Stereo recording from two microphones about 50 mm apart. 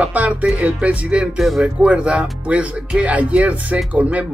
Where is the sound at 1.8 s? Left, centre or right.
Right.